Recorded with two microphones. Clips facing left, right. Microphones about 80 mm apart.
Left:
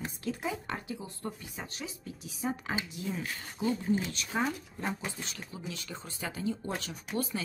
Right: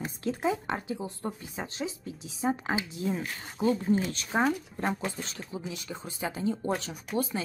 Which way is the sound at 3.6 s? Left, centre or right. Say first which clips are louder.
Right 4 dB; right.